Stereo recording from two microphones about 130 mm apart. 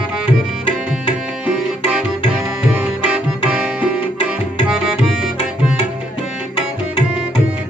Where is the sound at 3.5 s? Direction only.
15° right (ahead or behind).